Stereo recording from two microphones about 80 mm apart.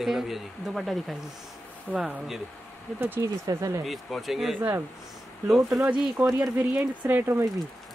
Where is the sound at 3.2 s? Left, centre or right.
Right.